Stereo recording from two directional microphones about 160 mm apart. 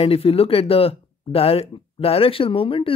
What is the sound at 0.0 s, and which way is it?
Speech, 35° left (ahead or behind).